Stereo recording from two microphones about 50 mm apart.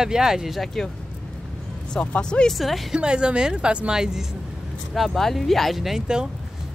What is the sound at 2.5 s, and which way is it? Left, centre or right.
Speech, centre.